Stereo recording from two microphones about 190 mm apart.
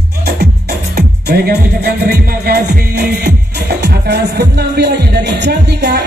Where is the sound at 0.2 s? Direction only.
55° right (ahead or behind).